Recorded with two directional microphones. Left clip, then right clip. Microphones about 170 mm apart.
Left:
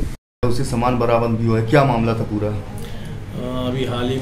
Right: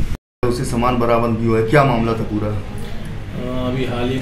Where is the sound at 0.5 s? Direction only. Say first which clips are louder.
Right 2 dB; 50° left (ahead or behind).